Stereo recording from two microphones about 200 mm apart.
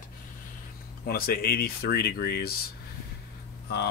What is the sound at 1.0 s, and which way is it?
Speech, 50° left (ahead or behind).